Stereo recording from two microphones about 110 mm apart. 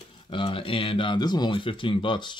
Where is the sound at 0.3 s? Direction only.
50° left (ahead or behind).